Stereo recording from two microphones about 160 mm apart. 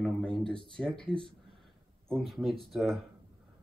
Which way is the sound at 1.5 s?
Centre (ahead or behind).